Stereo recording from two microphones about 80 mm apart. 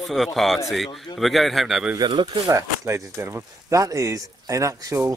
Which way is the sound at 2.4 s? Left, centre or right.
Right.